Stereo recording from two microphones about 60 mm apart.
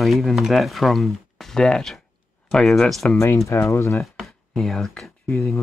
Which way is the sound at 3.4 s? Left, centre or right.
Left.